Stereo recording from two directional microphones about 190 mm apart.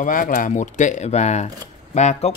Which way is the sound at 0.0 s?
45° left (ahead or behind).